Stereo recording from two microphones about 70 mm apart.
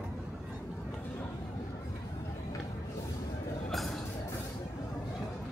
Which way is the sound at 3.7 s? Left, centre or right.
Centre.